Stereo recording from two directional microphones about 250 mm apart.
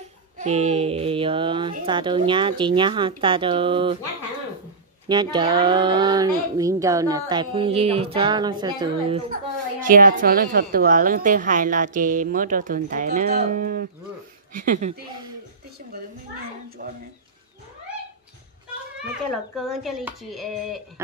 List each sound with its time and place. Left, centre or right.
0.4 s a woman's voice: right
5.0 s speech: centre
9.3 s a woman's voice: right
16.8 s a woman's voice: right
19.3 s speech: centre